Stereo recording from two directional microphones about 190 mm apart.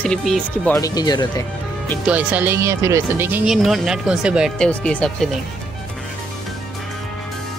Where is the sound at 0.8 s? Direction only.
20° left (ahead or behind).